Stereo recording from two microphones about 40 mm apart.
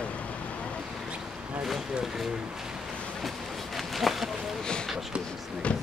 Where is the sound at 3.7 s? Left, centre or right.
Centre.